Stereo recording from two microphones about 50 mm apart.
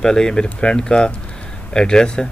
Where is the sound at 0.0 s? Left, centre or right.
Centre.